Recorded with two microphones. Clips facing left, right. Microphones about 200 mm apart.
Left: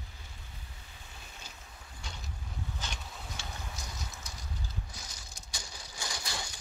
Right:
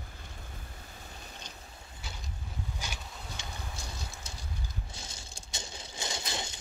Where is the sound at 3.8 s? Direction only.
30° right (ahead or behind).